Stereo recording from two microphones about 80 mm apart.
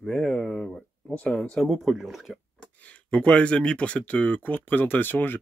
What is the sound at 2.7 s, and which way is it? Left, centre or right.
Speech, centre.